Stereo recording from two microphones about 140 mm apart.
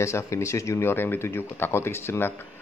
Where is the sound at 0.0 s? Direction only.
20° left (ahead or behind).